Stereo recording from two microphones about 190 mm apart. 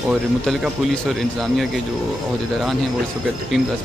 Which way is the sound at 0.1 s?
Centre (ahead or behind).